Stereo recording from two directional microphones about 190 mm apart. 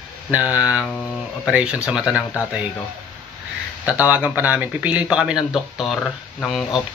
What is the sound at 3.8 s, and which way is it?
Speech, 10° right (ahead or behind).